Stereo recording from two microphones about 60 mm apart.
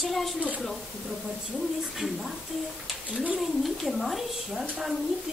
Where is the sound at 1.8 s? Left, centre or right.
Centre.